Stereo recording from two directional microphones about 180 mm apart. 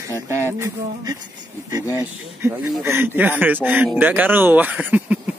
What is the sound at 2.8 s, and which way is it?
Speech, 10° right (ahead or behind).